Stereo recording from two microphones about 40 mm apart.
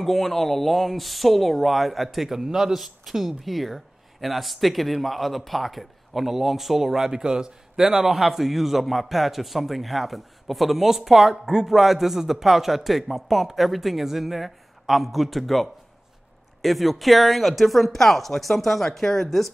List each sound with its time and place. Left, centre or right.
0.0 s a man's voice: centre